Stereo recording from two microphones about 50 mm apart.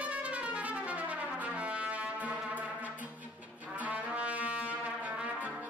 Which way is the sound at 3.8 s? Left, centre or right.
Right.